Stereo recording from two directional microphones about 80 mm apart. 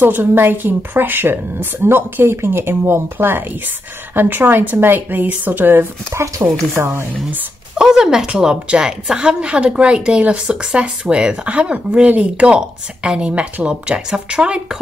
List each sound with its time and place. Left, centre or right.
0.0 s a woman's voice: right
6.2 s a woman's voice: right
7.7 s a woman's voice: centre